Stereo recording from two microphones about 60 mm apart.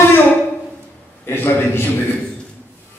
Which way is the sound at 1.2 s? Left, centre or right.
Left.